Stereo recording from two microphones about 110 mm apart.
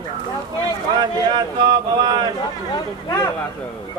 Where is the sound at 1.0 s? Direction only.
40° right (ahead or behind).